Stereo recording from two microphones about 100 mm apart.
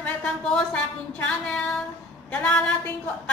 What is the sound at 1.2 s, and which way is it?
Female singing, 10° left (ahead or behind).